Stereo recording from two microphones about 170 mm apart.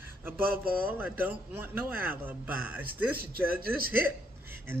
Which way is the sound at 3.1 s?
60° right (ahead or behind).